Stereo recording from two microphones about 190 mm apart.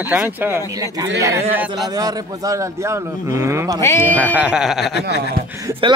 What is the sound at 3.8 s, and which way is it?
Speech, 10° left (ahead or behind).